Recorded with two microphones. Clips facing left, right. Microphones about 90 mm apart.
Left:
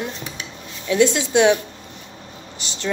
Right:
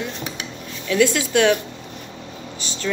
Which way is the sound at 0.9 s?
25° left (ahead or behind).